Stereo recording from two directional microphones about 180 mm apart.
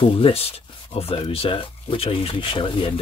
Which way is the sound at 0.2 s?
30° left (ahead or behind).